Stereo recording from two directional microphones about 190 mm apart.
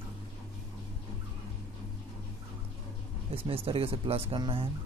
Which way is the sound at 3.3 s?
30° right (ahead or behind).